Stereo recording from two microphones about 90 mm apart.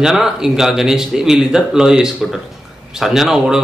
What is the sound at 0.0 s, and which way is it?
Speech, 5° right (ahead or behind).